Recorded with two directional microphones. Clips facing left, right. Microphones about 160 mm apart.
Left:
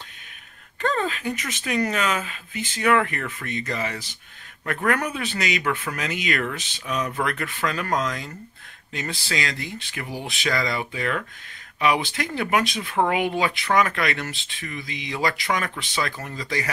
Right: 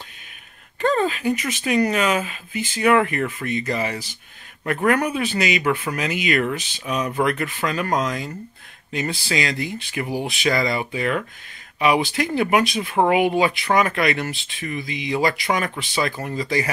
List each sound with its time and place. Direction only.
0.7 s speech: 15° right (ahead or behind)